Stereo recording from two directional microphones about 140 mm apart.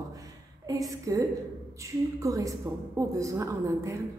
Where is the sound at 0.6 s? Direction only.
25° right (ahead or behind).